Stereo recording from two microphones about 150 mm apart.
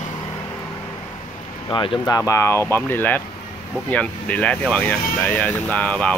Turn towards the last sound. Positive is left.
turn(degrees=10)  # may be behind; listen again after turning